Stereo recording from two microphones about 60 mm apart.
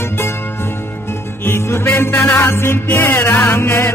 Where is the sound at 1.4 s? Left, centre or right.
Left.